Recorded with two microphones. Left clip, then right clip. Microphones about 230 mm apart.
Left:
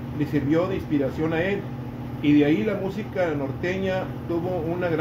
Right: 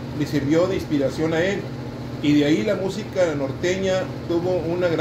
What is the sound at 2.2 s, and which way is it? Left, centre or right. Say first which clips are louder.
Speech: right 1 dB; left.